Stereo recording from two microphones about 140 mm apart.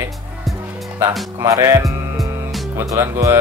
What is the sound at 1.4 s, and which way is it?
Speech, 20° right (ahead or behind).